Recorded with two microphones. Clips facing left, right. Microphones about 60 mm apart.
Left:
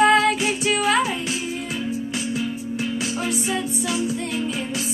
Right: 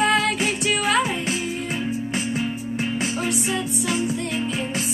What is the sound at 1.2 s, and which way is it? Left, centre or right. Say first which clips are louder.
Music: right 1 dB; right.